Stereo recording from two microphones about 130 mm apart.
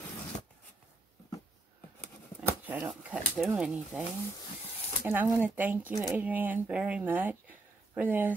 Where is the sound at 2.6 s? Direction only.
10° right (ahead or behind).